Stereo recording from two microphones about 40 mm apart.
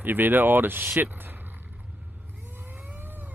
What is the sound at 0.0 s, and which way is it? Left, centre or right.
Speech, right.